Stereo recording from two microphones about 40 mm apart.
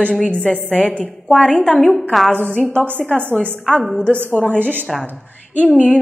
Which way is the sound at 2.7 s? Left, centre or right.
Right.